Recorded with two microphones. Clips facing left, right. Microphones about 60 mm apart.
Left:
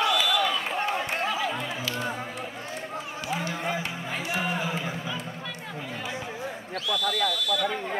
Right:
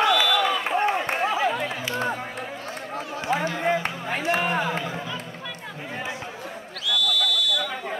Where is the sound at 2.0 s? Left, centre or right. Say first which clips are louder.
Right 3 dB; right.